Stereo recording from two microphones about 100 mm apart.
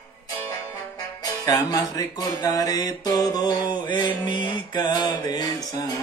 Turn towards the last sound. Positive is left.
turn(degrees=40)  # may be behind; listen again after turning